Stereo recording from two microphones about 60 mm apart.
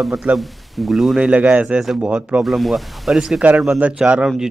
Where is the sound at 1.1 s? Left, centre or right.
Right.